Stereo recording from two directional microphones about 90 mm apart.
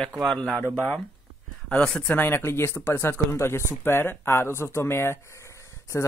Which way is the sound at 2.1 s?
25° left (ahead or behind).